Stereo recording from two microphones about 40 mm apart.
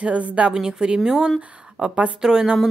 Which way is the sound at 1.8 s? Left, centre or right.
Right.